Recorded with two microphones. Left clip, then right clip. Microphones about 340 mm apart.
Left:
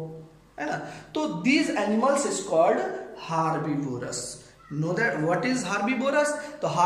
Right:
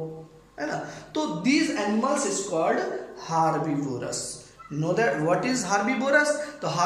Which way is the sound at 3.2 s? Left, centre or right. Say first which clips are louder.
Right 3 dB; centre.